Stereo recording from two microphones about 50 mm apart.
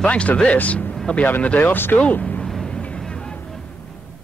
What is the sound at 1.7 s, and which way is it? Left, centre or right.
Speech, left.